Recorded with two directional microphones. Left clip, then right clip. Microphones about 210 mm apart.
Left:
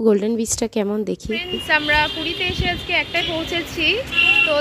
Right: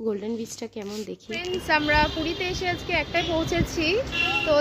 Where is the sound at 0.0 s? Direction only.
35° left (ahead or behind).